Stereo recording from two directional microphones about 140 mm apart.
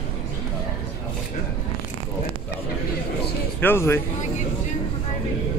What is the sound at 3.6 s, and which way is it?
Speech, 15° left (ahead or behind).